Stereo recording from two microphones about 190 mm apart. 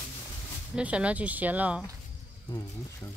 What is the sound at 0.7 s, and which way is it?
Speech, 5° right (ahead or behind).